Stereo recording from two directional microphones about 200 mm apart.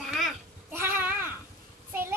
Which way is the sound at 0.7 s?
10° right (ahead or behind).